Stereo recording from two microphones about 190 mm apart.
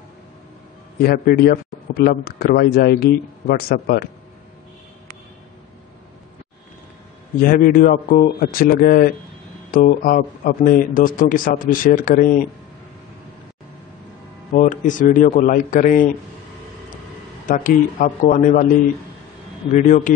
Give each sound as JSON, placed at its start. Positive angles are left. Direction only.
{"t": 1.0, "sound": "speech", "side_deg": 55}
{"t": 7.4, "sound": "speech", "side_deg": 50}
{"t": 14.5, "sound": "speech", "side_deg": 45}
{"t": 17.5, "sound": "speech", "side_deg": 45}
{"t": 19.7, "sound": "speech", "side_deg": 40}